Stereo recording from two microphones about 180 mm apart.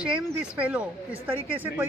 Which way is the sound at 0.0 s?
5° right (ahead or behind).